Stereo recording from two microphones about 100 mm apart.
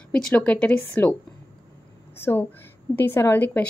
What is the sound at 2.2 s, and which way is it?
A woman's voice, 20° left (ahead or behind).